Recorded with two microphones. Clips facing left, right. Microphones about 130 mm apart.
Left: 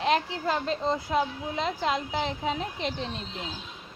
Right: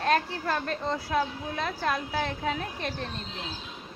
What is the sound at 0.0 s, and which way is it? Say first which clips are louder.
Speech: even; 15° left (ahead or behind).